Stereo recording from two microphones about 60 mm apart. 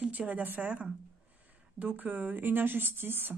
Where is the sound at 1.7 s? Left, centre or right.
Right.